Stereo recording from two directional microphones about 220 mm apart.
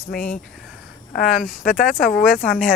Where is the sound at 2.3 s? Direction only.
5° left (ahead or behind).